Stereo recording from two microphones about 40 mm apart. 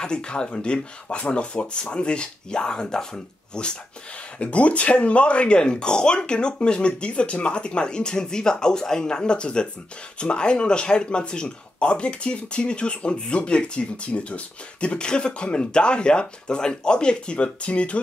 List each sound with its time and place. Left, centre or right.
0.0 s speech: left
4.4 s speech: left